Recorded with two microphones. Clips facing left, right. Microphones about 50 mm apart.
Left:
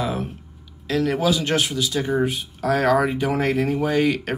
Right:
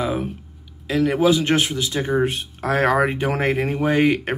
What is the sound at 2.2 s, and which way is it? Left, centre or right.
Speech, right.